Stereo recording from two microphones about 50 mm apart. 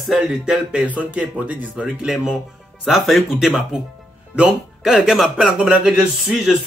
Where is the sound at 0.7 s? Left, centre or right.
Right.